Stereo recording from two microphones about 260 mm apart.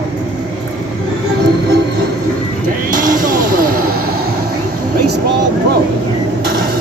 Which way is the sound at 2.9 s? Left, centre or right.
Right.